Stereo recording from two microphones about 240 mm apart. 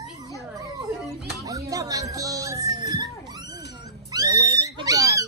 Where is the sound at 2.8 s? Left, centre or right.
Centre.